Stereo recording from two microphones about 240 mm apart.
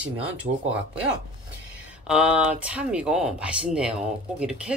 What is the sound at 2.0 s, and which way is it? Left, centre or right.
Speech, centre.